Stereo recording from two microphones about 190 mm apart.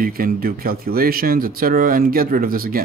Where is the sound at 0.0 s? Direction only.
50° right (ahead or behind).